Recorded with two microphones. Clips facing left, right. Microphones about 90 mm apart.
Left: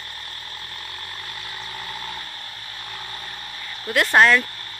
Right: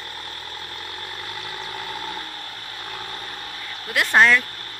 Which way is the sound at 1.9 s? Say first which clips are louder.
Right 3 dB; 55° right (ahead or behind).